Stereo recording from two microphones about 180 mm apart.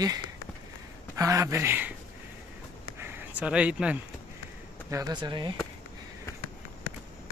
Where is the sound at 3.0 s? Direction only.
10° right (ahead or behind).